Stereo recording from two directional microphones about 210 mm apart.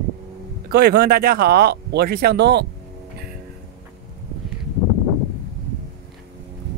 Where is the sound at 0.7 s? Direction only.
50° right (ahead or behind).